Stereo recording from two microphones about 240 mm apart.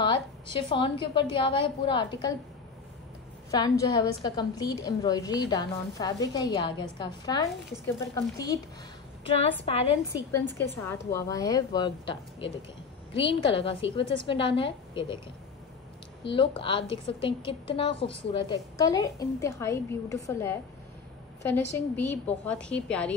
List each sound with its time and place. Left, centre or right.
0.0 s a woman's voice: left
3.5 s a woman's voice: centre
9.3 s a woman's voice: left
10.6 s a woman's voice: centre
16.3 s a woman's voice: left; by 23.1 s centre